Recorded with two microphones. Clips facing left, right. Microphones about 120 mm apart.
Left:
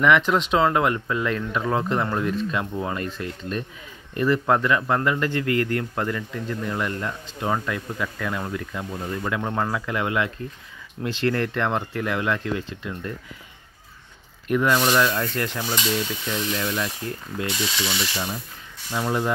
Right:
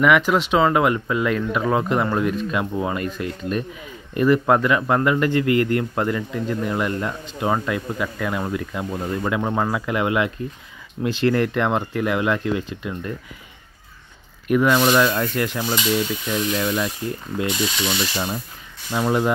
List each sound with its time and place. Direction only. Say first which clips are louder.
0.0 s speech: right 2 dB; 10° right (ahead or behind)
14.5 s speech: right 3 dB; 5° right (ahead or behind)
17.4 s ratchet: right 4 dB; 20° right (ahead or behind)
18.9 s speech: right 4 dB; 20° right (ahead or behind)